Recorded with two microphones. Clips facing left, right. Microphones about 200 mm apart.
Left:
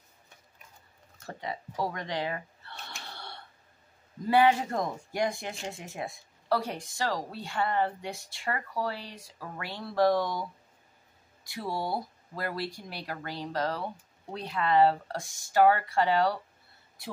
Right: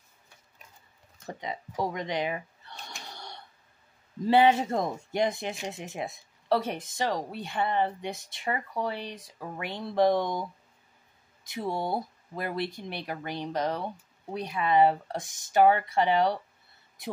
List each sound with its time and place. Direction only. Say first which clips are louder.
1.2 s speech: right 1 dB; 15° right (ahead or behind)
3.0 s gasp: even; 15° right (ahead or behind)
4.3 s speech: right 2 dB; 25° right (ahead or behind)
11.4 s speech: right 2 dB; 20° right (ahead or behind)